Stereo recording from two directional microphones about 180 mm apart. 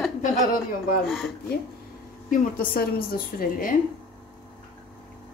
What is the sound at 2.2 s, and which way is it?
A woman's voice, 50° left (ahead or behind).